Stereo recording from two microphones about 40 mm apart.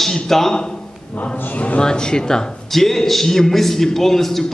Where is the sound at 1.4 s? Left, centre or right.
Left.